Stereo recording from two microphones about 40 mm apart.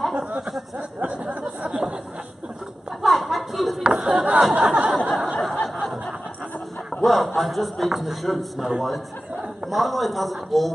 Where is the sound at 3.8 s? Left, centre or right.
Centre.